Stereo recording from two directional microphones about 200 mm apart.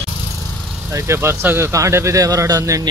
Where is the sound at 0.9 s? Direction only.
15° right (ahead or behind).